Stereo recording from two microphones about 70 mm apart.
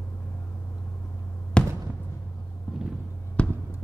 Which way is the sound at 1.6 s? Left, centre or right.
Centre.